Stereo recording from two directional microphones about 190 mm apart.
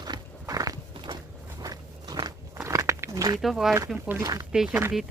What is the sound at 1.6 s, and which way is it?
Walk, 20° right (ahead or behind).